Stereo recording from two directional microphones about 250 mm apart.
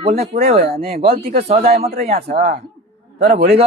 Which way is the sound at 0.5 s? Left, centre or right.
Right.